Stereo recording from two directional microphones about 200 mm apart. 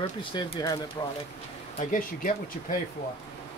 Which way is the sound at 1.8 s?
40° left (ahead or behind).